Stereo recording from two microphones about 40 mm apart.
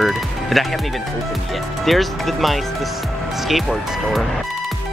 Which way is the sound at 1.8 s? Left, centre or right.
Centre.